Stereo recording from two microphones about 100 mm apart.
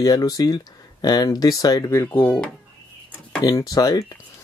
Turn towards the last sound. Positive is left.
turn(degrees=35)  # may be behind; listen again after turning